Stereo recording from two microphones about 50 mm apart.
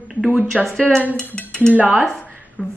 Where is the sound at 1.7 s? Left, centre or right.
Right.